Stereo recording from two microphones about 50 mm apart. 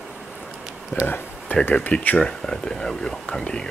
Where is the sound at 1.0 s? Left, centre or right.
Left.